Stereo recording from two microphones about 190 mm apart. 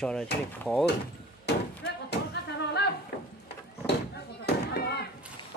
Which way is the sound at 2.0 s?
60° left (ahead or behind).